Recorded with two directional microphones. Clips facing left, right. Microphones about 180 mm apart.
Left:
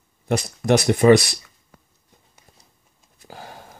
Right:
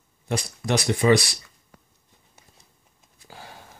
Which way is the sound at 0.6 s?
55° left (ahead or behind).